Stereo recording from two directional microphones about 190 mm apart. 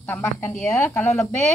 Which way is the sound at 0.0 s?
10° left (ahead or behind).